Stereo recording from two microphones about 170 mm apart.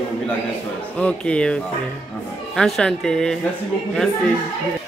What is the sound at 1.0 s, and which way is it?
A woman's voice, 5° left (ahead or behind).